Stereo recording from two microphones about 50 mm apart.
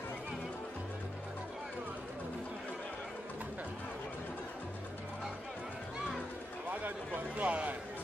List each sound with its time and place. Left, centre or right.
7.2 s a man's voice: right